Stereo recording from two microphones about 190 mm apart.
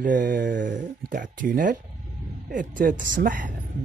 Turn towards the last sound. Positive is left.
turn(degrees=-45)  # may be behind; listen again after turning